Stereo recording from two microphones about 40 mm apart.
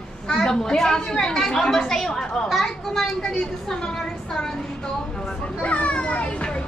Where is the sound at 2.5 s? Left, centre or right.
Centre.